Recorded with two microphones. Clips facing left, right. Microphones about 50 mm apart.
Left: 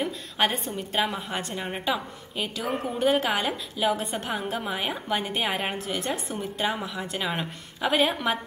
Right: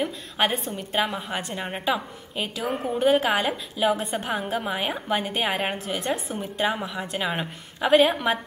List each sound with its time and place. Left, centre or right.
0.0 s a woman's voice: centre